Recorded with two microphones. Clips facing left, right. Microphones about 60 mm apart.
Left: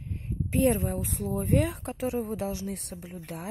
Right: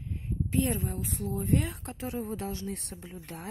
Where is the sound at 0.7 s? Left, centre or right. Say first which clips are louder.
Left 5 dB; left.